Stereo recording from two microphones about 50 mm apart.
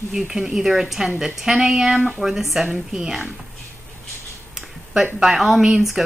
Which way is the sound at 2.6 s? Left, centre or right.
Centre.